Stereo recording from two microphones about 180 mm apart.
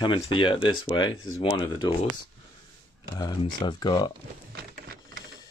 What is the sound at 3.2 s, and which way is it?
Speech, 25° left (ahead or behind).